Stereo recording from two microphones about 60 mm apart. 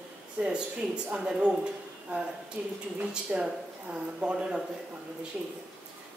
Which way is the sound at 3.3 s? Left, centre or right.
Centre.